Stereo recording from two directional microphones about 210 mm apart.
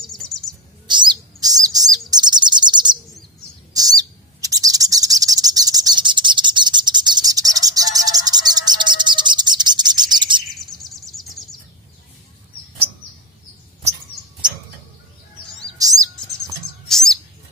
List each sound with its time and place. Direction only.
0.0 s bird: centre (ahead or behind)
0.8 s bird: 20° right (ahead or behind)
10.5 s a sound: centre (ahead or behind)
15.8 s chirp: 15° right (ahead or behind)
16.8 s bird: centre (ahead or behind)